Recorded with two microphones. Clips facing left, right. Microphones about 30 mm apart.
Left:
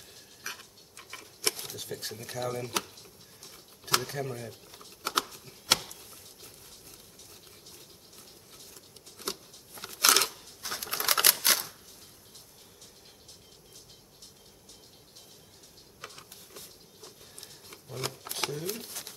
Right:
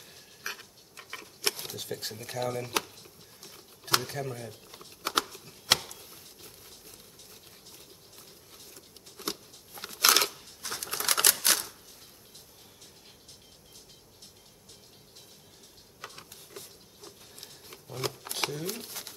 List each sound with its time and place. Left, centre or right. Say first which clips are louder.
0.5 s stir: right 2 dB; centre
1.6 s speech: right 2 dB; centre
3.4 s typewriter: right 1 dB; centre
5.0 s a sound: right 1 dB; centre
9.1 s a sound: right 1 dB; centre
10.6 s typewriter: left 1 dB; centre
17.6 s shuffling cards: right 2 dB; centre